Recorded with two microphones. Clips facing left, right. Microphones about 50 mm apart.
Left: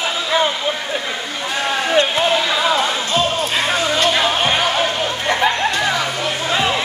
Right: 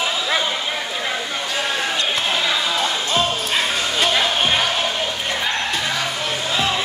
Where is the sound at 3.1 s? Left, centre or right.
Centre.